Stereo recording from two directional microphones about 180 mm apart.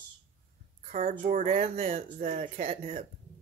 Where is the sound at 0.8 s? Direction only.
45° right (ahead or behind).